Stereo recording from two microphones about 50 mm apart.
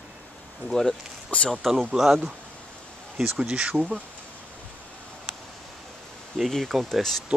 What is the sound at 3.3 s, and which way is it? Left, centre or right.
Speech, centre.